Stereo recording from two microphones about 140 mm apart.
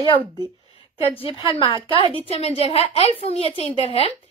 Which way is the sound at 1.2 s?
40° left (ahead or behind).